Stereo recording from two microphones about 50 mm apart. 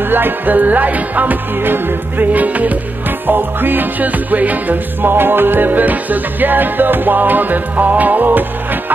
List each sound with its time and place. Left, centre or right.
0.1 s music: right